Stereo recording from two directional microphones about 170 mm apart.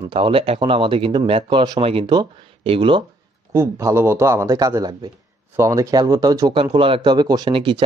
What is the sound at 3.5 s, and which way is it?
Speech, 15° right (ahead or behind).